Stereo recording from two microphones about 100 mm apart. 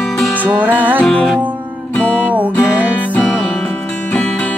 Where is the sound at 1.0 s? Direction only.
10° left (ahead or behind).